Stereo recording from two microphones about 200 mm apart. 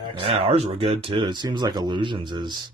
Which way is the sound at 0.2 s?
30° right (ahead or behind).